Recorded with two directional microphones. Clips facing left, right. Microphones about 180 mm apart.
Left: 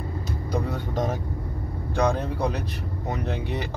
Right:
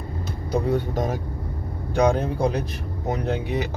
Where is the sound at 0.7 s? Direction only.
15° right (ahead or behind).